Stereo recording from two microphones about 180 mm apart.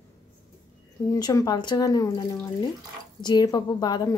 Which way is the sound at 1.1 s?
20° left (ahead or behind).